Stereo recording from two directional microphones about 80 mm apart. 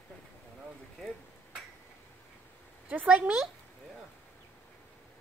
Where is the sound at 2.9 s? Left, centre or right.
Centre.